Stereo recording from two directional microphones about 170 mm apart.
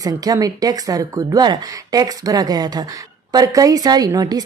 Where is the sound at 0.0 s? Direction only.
20° right (ahead or behind).